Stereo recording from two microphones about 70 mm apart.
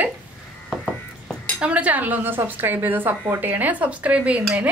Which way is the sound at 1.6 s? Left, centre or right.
Centre.